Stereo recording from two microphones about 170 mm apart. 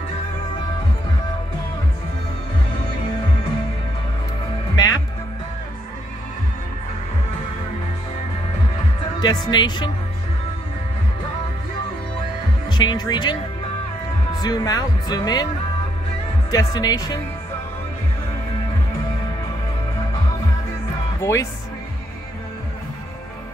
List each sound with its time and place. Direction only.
4.7 s music: 20° left (ahead or behind)
9.2 s speech: 25° left (ahead or behind)
12.6 s speech: 25° left (ahead or behind)
16.4 s speech: 25° left (ahead or behind)
21.2 s speech: 15° left (ahead or behind)